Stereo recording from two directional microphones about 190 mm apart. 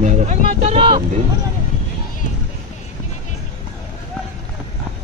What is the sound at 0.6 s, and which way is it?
Speech, 35° right (ahead or behind).